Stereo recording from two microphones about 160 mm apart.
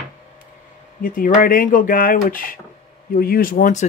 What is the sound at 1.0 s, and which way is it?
Speech, 60° left (ahead or behind).